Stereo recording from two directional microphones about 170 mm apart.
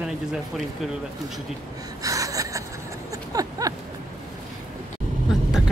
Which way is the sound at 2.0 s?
20° right (ahead or behind).